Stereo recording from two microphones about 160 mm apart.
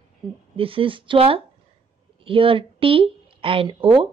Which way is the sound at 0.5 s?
35° right (ahead or behind).